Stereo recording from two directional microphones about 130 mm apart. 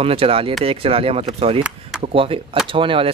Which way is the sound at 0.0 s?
45° right (ahead or behind).